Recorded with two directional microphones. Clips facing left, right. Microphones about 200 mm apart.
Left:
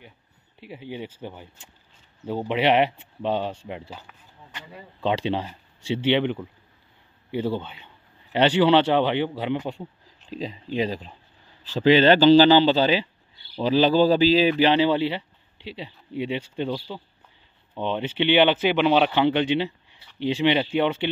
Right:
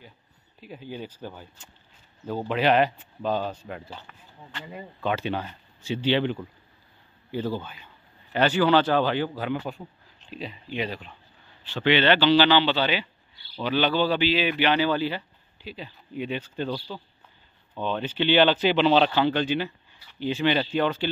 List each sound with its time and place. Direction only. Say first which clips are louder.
0.6 s speech: left 2 dB; 75° left (ahead or behind)
1.0 s speech: left 2 dB; 25° left (ahead or behind)
5.0 s speech: left 3 dB; 25° left (ahead or behind)
7.4 s a man's voice: left 3 dB; 25° left (ahead or behind)
16.5 s speech: left 2 dB; 20° left (ahead or behind)
19.5 s a sound: left 3 dB; 25° left (ahead or behind)
20.4 s speech: left 2 dB; 20° left (ahead or behind)